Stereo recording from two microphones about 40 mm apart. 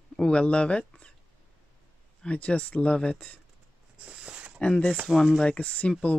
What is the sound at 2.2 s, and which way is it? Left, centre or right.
Speech, left.